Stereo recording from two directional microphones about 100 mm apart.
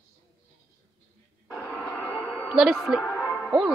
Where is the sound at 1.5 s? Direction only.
Centre (ahead or behind).